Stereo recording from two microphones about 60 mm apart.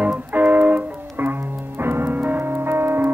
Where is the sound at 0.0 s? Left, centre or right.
Right.